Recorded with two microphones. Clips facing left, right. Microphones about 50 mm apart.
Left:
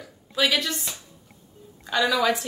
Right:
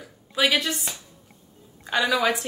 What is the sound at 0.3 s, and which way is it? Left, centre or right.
Speech, centre.